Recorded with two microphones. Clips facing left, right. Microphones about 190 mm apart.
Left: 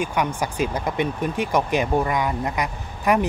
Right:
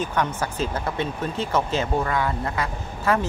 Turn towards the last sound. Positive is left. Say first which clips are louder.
# left 2 dB
turn(degrees=15)  # may be behind; listen again after turning